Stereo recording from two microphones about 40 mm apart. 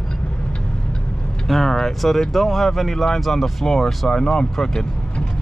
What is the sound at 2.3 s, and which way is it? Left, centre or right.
Speech, centre.